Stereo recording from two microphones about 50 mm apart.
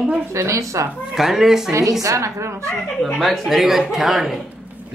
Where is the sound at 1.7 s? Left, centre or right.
Right.